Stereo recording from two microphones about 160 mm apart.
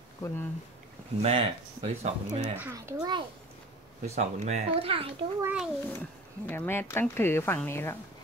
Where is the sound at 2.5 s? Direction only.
15° right (ahead or behind).